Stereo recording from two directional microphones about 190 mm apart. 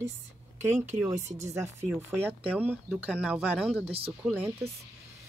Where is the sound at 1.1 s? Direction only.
35° right (ahead or behind).